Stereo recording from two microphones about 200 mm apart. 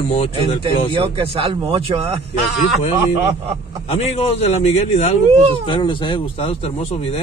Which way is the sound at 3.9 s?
30° left (ahead or behind).